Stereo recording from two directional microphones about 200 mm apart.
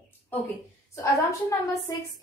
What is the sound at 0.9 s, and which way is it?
A woman's voice, 15° left (ahead or behind).